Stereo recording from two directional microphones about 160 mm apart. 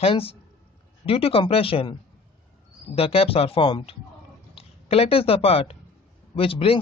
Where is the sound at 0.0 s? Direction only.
35° left (ahead or behind).